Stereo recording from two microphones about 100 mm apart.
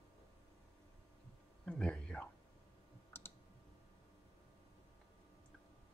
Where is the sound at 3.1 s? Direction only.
25° left (ahead or behind).